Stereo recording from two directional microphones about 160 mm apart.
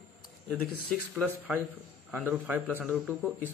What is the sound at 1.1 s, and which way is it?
A man's voice, 10° right (ahead or behind).